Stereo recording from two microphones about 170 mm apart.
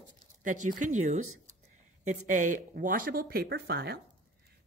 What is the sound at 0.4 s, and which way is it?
Speech, 50° right (ahead or behind).